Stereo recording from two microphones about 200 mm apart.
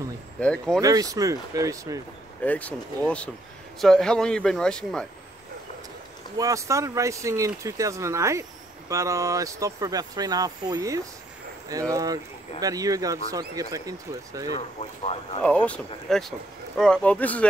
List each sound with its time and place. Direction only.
0.4 s speech: 5° left (ahead or behind)
0.7 s speech: 15° right (ahead or behind)
2.4 s speech: 5° left (ahead or behind)
3.8 s speech: 5° left (ahead or behind)
6.3 s speech: 15° right (ahead or behind)
15.4 s speech: 5° left (ahead or behind)